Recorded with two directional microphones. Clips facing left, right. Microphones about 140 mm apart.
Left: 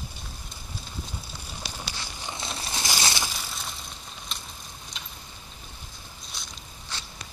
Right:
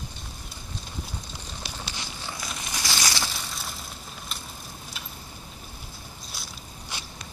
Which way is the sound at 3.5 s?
5° right (ahead or behind).